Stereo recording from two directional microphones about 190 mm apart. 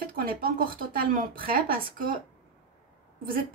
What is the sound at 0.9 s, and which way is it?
Speech, 50° right (ahead or behind).